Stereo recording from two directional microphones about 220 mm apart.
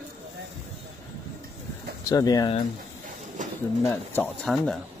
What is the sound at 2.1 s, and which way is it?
Speech, 15° left (ahead or behind).